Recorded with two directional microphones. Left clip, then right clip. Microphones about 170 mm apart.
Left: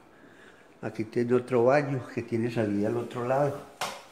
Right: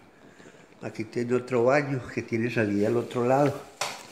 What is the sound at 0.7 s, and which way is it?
Speech, 5° left (ahead or behind).